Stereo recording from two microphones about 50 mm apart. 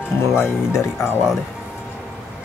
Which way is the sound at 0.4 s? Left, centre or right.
Left.